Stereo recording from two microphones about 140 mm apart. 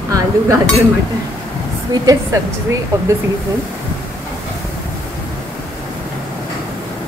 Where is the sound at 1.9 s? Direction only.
25° right (ahead or behind).